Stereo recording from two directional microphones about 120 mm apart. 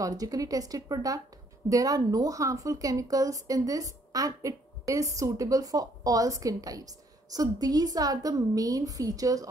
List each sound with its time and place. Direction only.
0.0 s a woman's voice: 30° right (ahead or behind)